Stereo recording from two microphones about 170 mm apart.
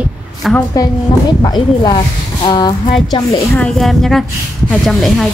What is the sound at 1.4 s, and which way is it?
Speech, 25° left (ahead or behind).